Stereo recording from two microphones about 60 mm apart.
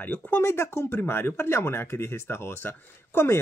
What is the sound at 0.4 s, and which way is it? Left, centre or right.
Speech, left.